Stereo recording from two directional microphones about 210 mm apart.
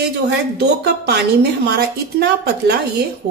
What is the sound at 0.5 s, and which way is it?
A woman's voice, 55° right (ahead or behind).